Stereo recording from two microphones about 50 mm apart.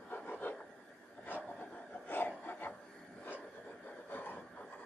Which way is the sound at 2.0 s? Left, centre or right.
Left.